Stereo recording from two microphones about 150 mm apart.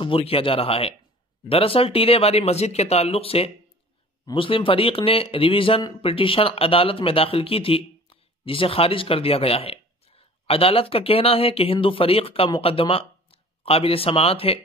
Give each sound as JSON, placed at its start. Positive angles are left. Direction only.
{"t": 0.0, "sound": "a man's voice", "side_deg": 35}